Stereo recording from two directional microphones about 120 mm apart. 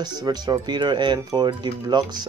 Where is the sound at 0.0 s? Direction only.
35° right (ahead or behind).